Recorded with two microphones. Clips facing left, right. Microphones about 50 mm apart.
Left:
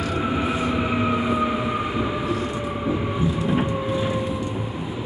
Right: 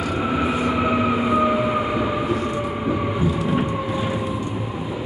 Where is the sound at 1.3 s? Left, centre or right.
Right.